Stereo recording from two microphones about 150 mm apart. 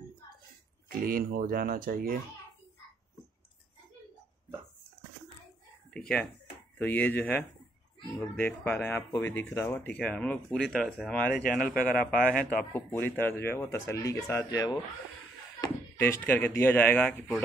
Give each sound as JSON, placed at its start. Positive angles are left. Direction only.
{"t": 0.8, "sound": "speech", "side_deg": -75}
{"t": 5.9, "sound": "speech", "side_deg": 5}
{"t": 16.0, "sound": "speech", "side_deg": 15}